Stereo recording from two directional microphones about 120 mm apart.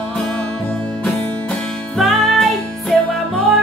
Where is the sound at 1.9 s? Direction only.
Centre (ahead or behind).